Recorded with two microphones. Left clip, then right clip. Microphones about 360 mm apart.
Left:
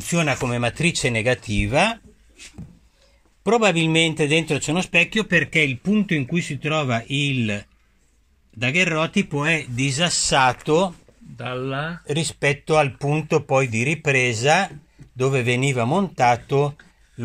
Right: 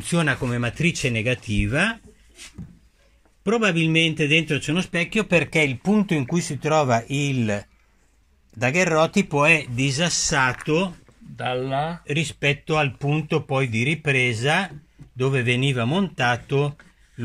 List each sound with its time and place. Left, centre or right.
0.0 s speech: centre
3.4 s speech: centre
6.0 s a man's voice: centre
11.3 s speech: centre
12.1 s speech: centre